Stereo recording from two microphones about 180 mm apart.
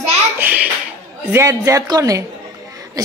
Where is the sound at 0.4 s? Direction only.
10° right (ahead or behind).